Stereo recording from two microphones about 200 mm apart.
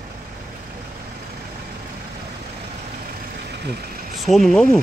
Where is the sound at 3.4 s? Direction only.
55° right (ahead or behind).